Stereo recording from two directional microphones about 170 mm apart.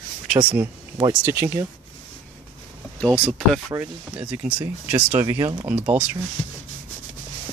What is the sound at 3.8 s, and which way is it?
Speech, 10° right (ahead or behind).